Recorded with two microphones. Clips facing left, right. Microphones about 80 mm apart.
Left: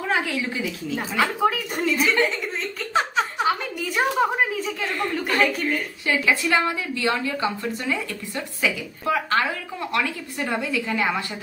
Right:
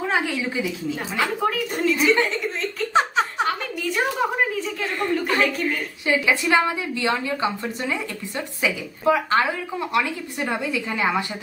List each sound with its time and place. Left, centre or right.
0.0 s speech: centre
1.4 s a woman's voice: centre
2.9 s a sound: right
3.4 s a sound: centre
4.6 s a woman's voice: centre
6.0 s a woman's voice: right